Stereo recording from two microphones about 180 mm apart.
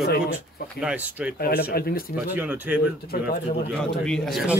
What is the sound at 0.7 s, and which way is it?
Speech, 5° right (ahead or behind).